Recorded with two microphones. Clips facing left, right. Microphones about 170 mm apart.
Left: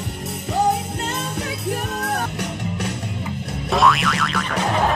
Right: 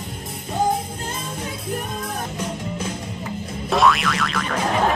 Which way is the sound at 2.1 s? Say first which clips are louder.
Left 2 dB; 70° left (ahead or behind).